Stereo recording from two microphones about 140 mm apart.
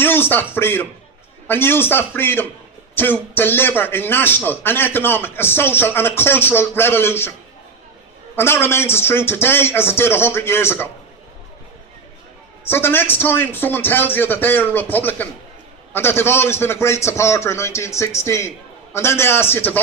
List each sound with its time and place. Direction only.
0.0 s a man's voice: 15° left (ahead or behind)
8.4 s a man's voice: 15° left (ahead or behind)
12.6 s a man's voice: 15° left (ahead or behind)